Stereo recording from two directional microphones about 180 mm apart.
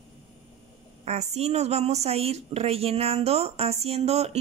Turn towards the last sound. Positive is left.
turn(degrees=-35)  # may be behind; listen again after turning